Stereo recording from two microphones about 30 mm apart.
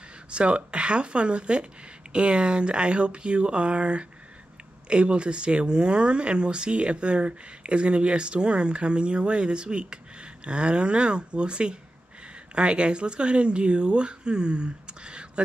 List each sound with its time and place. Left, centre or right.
0.3 s speech: right